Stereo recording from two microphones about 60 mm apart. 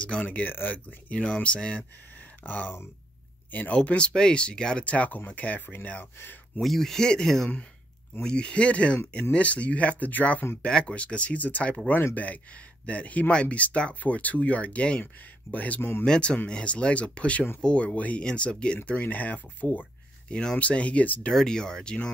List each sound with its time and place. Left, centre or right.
0.2 s speech: left
2.4 s speech: left
6.6 s speech: centre; by 10.4 s left
10.6 s speech: centre
16.1 s speech: centre
18.9 s speech: left
21.3 s speech: centre